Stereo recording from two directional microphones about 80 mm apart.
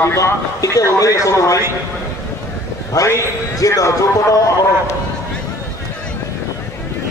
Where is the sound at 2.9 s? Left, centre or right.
Left.